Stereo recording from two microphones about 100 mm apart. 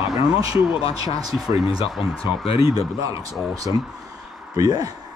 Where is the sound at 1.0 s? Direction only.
40° right (ahead or behind).